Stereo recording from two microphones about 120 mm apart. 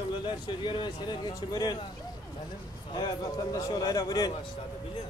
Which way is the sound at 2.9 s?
35° left (ahead or behind).